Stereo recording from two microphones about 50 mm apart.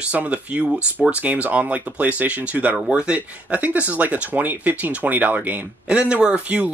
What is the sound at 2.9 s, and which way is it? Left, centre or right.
Speech, right.